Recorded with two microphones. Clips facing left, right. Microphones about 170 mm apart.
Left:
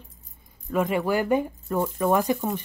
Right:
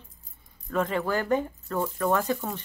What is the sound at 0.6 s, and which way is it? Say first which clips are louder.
Speech: left 3 dB; 10° left (ahead or behind).